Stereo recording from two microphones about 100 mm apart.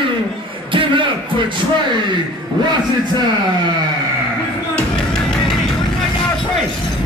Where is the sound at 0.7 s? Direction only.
55° right (ahead or behind).